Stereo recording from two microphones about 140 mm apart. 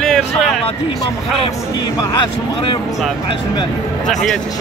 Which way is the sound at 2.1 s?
40° left (ahead or behind).